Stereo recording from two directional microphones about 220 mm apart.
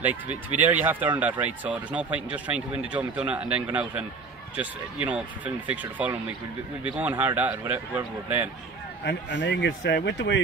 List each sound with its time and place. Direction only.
0.5 s speech: 10° right (ahead or behind)
5.0 s speech: 5° right (ahead or behind)
9.0 s speech: 55° left (ahead or behind)